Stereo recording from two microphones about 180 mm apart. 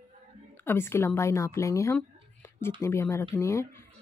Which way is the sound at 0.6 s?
10° left (ahead or behind).